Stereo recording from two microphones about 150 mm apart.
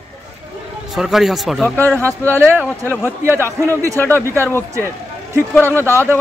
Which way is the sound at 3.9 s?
15° left (ahead or behind).